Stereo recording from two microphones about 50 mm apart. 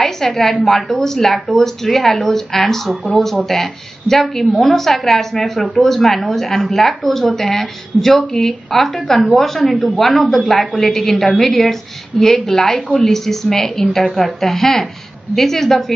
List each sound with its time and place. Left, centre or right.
0.0 s a woman's voice: centre